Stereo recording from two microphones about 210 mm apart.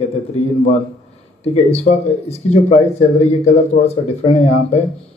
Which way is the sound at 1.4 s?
30° left (ahead or behind).